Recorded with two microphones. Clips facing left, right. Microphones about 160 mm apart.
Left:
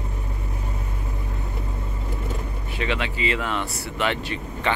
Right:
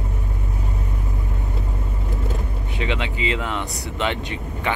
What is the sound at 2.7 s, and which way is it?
Speech, 20° right (ahead or behind).